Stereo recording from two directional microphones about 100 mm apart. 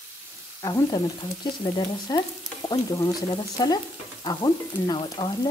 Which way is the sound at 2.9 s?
40° left (ahead or behind).